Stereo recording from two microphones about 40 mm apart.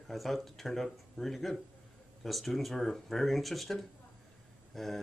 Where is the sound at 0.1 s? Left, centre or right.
Centre.